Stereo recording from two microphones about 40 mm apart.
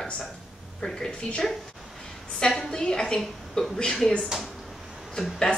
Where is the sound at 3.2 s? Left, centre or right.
Centre.